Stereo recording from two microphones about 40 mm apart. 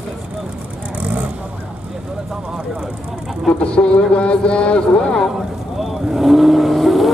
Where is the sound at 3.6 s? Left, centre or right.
Left.